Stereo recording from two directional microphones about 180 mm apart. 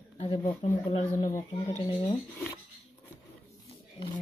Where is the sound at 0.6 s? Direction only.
35° left (ahead or behind).